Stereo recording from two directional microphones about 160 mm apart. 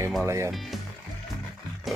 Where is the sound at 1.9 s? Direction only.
Centre (ahead or behind).